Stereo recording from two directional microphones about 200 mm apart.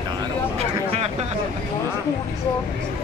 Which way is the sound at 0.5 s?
30° right (ahead or behind).